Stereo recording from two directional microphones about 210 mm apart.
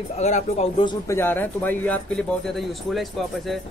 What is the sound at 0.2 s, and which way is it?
Speech, 30° left (ahead or behind).